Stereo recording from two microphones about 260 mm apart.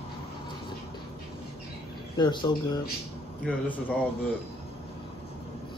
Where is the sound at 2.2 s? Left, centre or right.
Centre.